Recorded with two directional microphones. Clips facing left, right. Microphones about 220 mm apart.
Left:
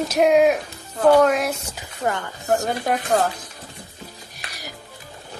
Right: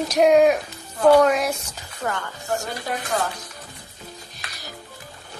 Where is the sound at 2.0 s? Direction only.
25° left (ahead or behind).